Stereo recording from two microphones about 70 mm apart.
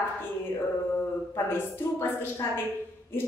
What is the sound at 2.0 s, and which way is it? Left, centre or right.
Speech, left.